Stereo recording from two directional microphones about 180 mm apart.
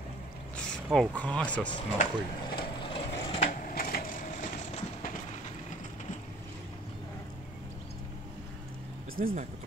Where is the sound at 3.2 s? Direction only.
30° left (ahead or behind).